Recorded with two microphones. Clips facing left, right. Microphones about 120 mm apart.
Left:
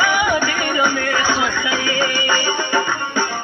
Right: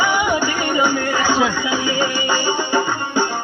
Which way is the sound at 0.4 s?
10° right (ahead or behind).